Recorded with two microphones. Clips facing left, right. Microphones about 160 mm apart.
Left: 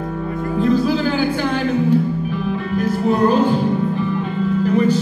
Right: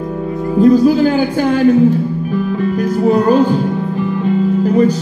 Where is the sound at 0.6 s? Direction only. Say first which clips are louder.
Right 8 dB; 40° right (ahead or behind).